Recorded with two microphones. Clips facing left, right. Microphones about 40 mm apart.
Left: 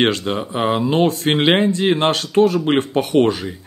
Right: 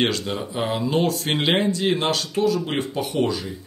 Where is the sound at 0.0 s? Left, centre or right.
Left.